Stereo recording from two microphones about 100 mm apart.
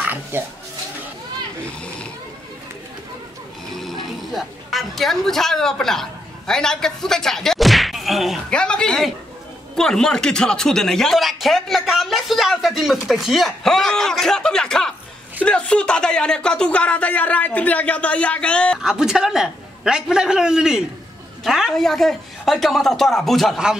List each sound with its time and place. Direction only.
0.0 s dog: 15° right (ahead or behind)
3.7 s speech: centre (ahead or behind)
8.5 s speech: 10° left (ahead or behind)
18.8 s a man's voice: 5° right (ahead or behind)